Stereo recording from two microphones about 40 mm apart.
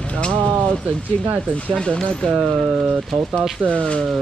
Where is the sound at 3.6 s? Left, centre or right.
Left.